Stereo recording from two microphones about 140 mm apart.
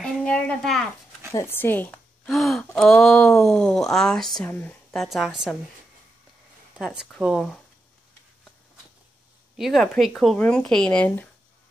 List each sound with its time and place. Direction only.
0.0 s a sound: 10° left (ahead or behind)
1.3 s speech: 15° left (ahead or behind)
2.2 s speech: centre (ahead or behind)
5.0 s speech: centre (ahead or behind)
6.8 s speech: 5° right (ahead or behind)
9.6 s speech: centre (ahead or behind)